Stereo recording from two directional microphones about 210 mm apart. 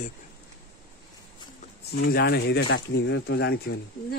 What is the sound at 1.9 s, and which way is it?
Speech, 50° left (ahead or behind).